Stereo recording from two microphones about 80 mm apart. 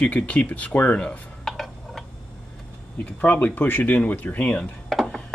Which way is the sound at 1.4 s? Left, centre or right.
Centre.